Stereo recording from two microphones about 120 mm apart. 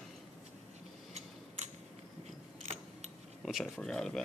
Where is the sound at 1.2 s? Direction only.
65° right (ahead or behind).